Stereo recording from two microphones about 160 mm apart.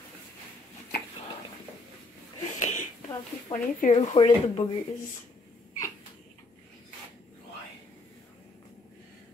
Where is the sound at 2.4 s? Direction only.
50° left (ahead or behind).